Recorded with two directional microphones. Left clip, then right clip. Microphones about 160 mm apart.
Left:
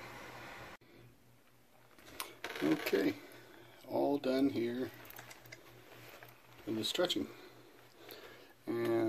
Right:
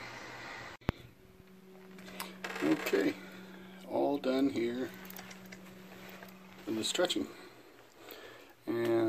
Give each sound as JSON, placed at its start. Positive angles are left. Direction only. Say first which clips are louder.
{"t": 2.1, "sound": "cash register", "louder": "right 2 dB", "side_deg": 0}
{"t": 3.8, "sound": "speech", "louder": "right 2 dB", "side_deg": 5}
{"t": 6.7, "sound": "speech", "louder": "right 2 dB", "side_deg": 0}
{"t": 8.6, "sound": "speech", "louder": "right 3 dB", "side_deg": 5}